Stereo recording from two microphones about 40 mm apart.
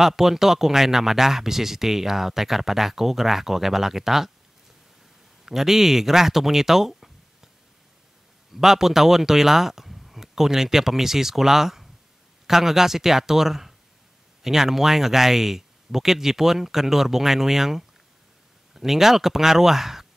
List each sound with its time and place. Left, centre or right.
0.0 s speech: centre
5.4 s speech: centre
8.5 s speech: centre